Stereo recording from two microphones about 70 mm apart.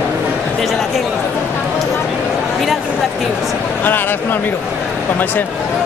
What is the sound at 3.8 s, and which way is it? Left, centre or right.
Speech, left.